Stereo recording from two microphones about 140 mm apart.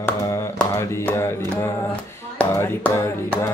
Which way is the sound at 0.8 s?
20° left (ahead or behind).